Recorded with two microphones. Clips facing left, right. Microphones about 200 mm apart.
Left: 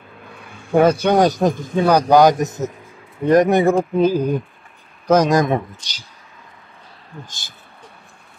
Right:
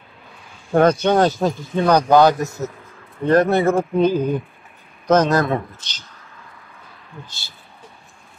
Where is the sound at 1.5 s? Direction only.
50° left (ahead or behind).